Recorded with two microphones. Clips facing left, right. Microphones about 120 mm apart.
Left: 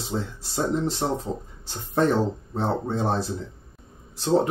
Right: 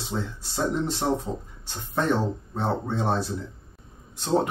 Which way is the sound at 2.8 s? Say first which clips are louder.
Left 1 dB; 30° left (ahead or behind).